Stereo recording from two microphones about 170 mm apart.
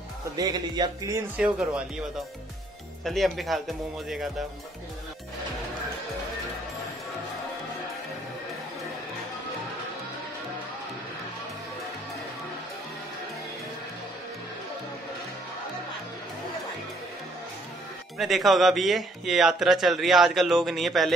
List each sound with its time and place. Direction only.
0.4 s music: 25° right (ahead or behind)
1.3 s a man's voice: 5° right (ahead or behind)
3.0 s a man's voice: centre (ahead or behind)
18.1 s a man's voice: centre (ahead or behind)